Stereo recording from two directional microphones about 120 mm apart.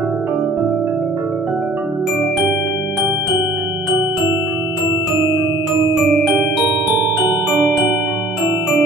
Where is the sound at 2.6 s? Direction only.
15° right (ahead or behind).